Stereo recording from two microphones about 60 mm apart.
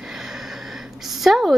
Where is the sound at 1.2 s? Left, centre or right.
Centre.